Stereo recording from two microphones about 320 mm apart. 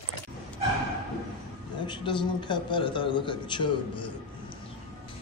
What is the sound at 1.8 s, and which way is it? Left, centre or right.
A man's voice, centre.